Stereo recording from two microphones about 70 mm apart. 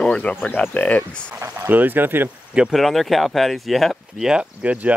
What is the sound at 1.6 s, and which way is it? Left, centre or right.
Speech, right.